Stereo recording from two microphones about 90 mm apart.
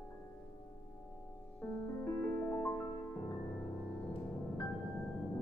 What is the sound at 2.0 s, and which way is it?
Music, 30° left (ahead or behind).